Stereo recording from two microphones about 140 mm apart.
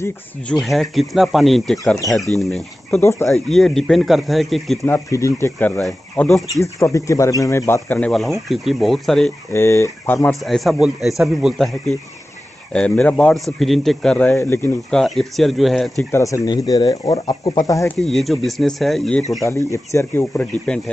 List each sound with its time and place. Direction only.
0.6 s speech: centre (ahead or behind)
3.0 s speech: 20° left (ahead or behind)
3.4 s speech: centre (ahead or behind)
4.8 s speech: 20° left (ahead or behind)
5.8 s speech: centre (ahead or behind)
6.6 s speech: 20° left (ahead or behind)
8.1 s speech: centre (ahead or behind)
9.5 s speech: 20° left (ahead or behind)
10.4 s speech: centre (ahead or behind)
12.7 s speech: 5° left (ahead or behind)
14.9 s speech: centre (ahead or behind)
16.1 s speech: 20° left (ahead or behind)
17.9 s speech: centre (ahead or behind)
19.4 s speech: 20° left (ahead or behind)